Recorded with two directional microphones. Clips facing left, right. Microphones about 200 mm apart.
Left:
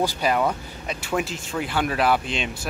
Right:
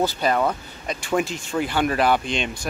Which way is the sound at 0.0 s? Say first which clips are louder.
Right 1 dB; 10° left (ahead or behind).